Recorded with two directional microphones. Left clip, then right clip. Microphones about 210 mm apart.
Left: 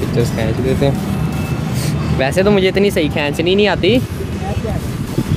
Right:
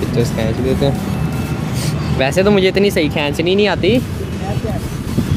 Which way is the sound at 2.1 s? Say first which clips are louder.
Even; 10° right (ahead or behind).